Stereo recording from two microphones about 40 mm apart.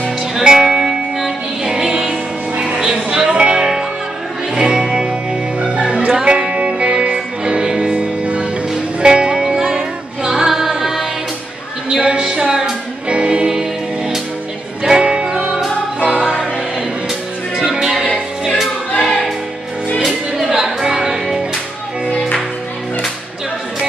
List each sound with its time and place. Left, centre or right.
0.4 s music: centre
11.9 s a sound: right
12.3 s music: centre
13.1 s music: right
13.5 s music: centre
17.6 s music: centre
18.6 s music: centre